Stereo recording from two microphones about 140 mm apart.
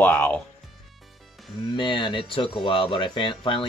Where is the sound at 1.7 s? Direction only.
30° left (ahead or behind).